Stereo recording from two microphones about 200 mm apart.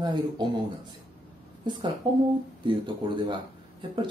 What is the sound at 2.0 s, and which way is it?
Speech, 20° right (ahead or behind).